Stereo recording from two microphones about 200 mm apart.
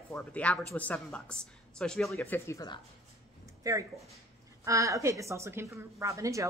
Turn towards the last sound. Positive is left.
turn(degrees=-15)  # may be behind; listen again after turning